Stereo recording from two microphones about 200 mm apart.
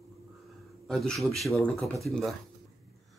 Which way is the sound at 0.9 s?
Centre (ahead or behind).